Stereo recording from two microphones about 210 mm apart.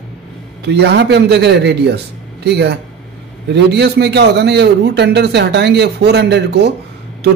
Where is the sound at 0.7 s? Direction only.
55° right (ahead or behind).